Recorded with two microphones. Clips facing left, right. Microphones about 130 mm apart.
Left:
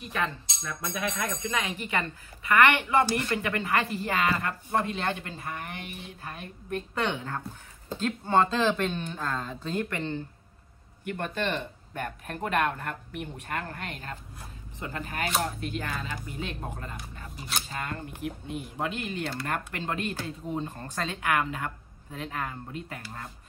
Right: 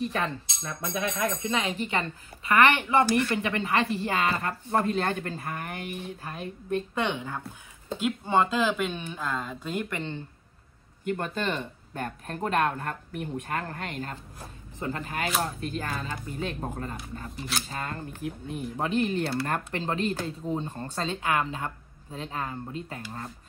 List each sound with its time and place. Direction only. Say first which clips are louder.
0.0 s speech: right 2 dB; 35° right (ahead or behind)
7.0 s speech: right 1 dB; 15° right (ahead or behind)
11.1 s speech: left 3 dB; 35° right (ahead or behind)